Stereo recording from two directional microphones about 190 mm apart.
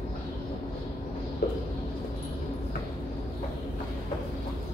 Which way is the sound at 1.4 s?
45° left (ahead or behind).